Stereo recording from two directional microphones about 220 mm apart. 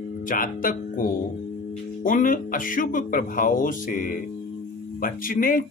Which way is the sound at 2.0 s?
40° left (ahead or behind).